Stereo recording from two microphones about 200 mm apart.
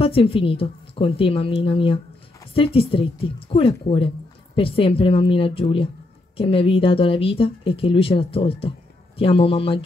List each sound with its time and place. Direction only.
0.0 s speech: 25° left (ahead or behind)